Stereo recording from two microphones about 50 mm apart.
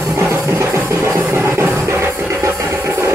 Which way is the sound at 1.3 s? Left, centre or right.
Right.